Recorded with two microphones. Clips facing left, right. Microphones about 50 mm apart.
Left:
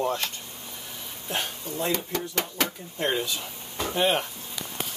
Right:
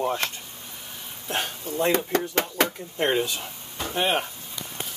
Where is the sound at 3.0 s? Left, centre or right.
Right.